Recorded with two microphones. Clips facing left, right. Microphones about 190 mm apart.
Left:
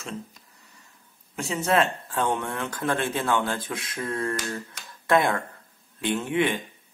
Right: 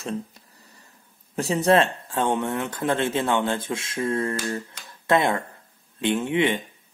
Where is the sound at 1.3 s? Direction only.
35° right (ahead or behind).